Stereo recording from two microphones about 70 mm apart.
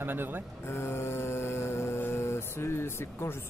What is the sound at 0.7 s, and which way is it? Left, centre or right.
Mantra, left.